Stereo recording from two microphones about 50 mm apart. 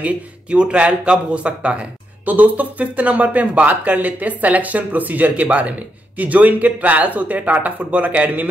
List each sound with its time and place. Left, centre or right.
0.0 s speech: right